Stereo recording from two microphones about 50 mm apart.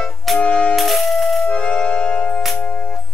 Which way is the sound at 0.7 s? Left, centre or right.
Centre.